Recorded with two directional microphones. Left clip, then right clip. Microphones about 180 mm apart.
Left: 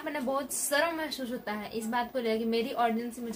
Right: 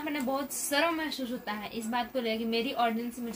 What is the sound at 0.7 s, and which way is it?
A woman's voice, 15° left (ahead or behind).